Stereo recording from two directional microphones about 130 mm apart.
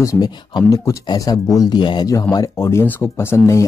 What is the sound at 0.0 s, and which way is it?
A man's voice, 30° left (ahead or behind).